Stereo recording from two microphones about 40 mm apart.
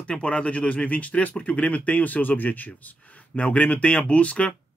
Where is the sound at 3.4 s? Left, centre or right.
Left.